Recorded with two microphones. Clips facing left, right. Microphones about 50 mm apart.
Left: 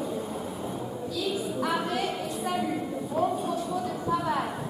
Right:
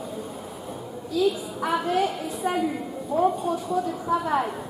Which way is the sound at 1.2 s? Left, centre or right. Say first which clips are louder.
Right 9 dB; centre.